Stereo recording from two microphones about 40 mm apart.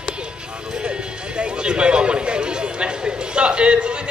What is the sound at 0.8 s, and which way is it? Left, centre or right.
Music, right.